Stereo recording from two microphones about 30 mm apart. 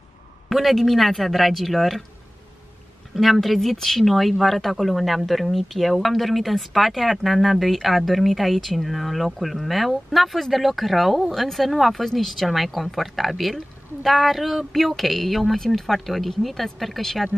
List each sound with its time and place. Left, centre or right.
0.5 s speech: centre
3.2 s speech: centre